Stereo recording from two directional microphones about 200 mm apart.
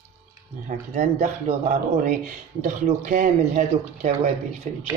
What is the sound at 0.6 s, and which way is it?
Speech, 40° right (ahead or behind).